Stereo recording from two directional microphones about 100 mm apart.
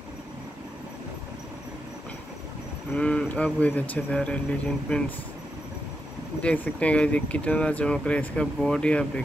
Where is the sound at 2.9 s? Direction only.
10° left (ahead or behind).